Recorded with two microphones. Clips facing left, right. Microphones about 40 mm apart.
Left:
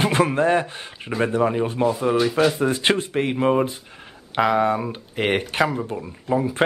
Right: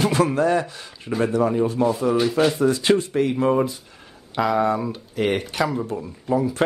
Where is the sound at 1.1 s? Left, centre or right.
Left.